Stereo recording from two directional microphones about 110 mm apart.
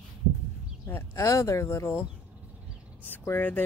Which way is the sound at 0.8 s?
20° left (ahead or behind).